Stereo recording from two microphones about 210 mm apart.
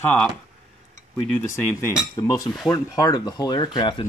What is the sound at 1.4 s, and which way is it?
Speech, 15° left (ahead or behind).